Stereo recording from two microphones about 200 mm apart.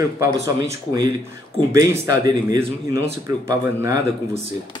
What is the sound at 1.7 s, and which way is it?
Speech, 20° right (ahead or behind).